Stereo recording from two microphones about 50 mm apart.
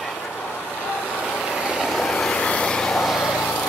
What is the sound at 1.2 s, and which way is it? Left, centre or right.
Vehicle, centre.